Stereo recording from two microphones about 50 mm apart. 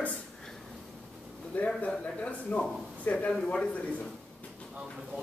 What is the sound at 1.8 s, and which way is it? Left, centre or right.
Speech, left.